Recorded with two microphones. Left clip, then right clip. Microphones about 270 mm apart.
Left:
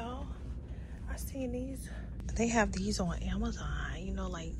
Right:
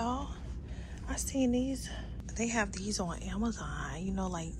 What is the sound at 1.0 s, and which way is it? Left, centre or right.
Speech, right.